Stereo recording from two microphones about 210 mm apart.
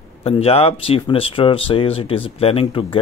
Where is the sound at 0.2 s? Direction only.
30° left (ahead or behind).